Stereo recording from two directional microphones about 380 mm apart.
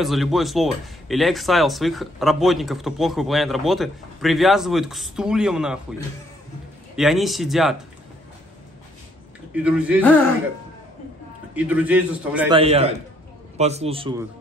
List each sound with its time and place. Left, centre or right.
0.0 s speech: centre
7.0 s speech: centre
9.5 s speech: centre
11.5 s speech: centre
12.5 s a man's voice: centre